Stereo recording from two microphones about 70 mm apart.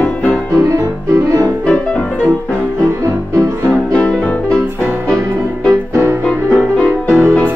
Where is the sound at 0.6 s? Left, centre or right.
Right.